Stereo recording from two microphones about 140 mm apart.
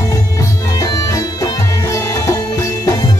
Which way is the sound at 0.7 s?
25° left (ahead or behind).